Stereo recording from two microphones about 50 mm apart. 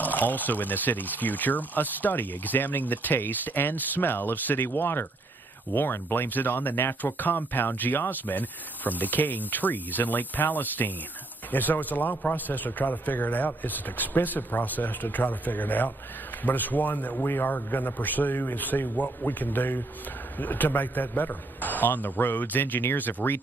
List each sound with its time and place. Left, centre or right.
0.0 s speech: left
17.2 s speech: left